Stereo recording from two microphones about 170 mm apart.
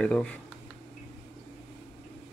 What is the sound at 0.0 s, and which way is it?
Speech, 5° left (ahead or behind).